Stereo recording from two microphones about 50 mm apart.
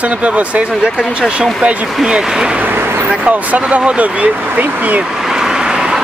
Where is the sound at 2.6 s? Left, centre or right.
Right.